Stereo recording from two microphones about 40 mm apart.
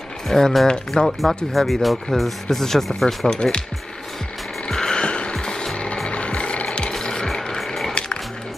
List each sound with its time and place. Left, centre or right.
0.3 s speech: centre
4.6 s vehicle: centre
5.3 s music: centre
6.0 s music: left
7.5 s a sound: centre